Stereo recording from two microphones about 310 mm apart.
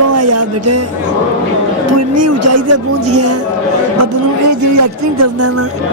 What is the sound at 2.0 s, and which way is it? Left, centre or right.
Speech, right.